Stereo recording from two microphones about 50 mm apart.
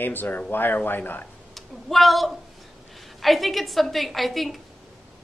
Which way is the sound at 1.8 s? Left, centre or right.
Centre.